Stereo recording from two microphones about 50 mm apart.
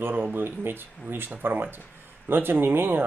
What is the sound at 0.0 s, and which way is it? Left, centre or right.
Speech, right.